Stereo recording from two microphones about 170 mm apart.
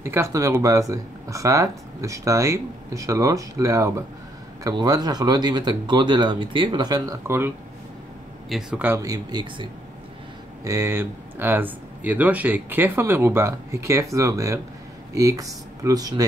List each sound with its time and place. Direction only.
0.0 s speech: 15° right (ahead or behind)
8.5 s speech: 5° right (ahead or behind); by 16.3 s 20° right (ahead or behind)